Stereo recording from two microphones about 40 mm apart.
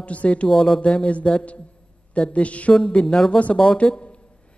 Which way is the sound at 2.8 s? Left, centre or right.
Left.